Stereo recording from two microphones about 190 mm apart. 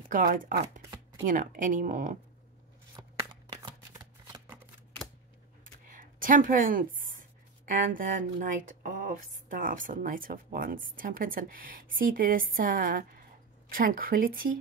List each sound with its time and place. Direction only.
0.1 s speech: 45° right (ahead or behind)
3.6 s shuffling cards: 20° right (ahead or behind)
5.9 s speech: 45° right (ahead or behind)